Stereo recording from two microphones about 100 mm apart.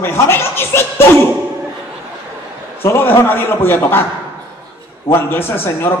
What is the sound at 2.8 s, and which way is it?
A man's voice, 20° left (ahead or behind).